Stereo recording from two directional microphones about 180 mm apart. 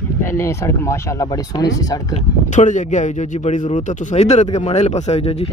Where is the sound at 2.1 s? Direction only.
40° left (ahead or behind).